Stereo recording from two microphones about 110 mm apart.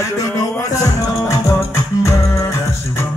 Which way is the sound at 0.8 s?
30° left (ahead or behind).